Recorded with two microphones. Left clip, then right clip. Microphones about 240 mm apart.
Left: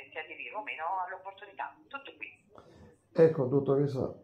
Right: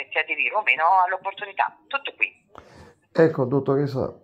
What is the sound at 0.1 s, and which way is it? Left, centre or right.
Speech, right.